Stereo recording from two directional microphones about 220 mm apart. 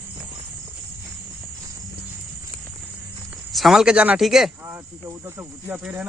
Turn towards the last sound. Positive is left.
turn(degrees=-5)  # may be behind; listen again after turning